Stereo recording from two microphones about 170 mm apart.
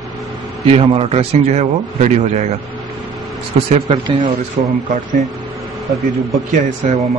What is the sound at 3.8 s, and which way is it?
Speech, 25° right (ahead or behind).